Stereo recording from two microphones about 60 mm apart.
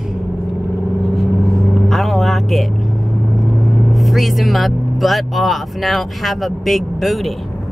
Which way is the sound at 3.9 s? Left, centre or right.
Centre.